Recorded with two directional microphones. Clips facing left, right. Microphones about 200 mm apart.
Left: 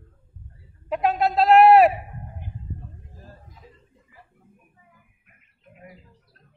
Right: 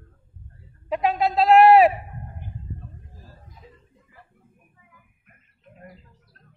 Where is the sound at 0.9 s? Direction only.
Centre (ahead or behind).